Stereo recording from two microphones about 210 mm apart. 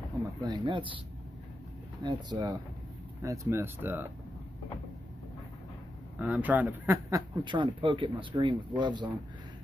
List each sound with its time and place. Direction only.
0.4 s a man's voice: 20° right (ahead or behind)
2.0 s a man's voice: 20° right (ahead or behind)
6.1 s a man's voice: 5° right (ahead or behind)